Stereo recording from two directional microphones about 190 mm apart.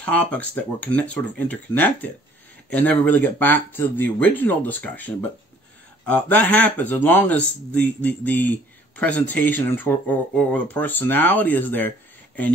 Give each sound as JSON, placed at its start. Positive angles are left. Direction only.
{"t": 0.0, "sound": "speech", "side_deg": 5}